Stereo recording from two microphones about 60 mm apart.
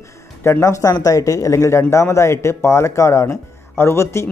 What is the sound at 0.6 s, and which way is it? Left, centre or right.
Speech, left.